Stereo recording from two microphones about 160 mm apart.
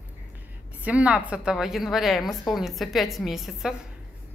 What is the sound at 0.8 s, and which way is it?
A woman's voice, 10° right (ahead or behind).